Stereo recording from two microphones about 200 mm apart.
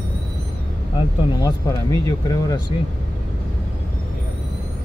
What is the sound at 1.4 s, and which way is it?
Speech, 15° left (ahead or behind).